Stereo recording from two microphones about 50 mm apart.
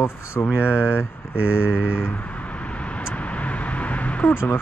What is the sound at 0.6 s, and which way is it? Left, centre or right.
Speech, left.